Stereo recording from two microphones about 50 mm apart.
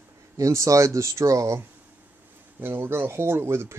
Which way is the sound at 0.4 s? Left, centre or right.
Right.